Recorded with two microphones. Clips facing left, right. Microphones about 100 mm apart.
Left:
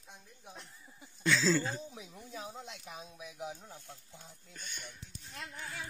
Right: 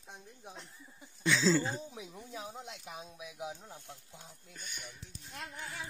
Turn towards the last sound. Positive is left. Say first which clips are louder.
# even
turn(degrees=-10)  # may be behind; listen again after turning